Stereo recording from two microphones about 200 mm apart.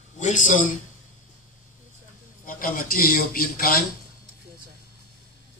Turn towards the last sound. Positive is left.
turn(degrees=45)  # may be behind; listen again after turning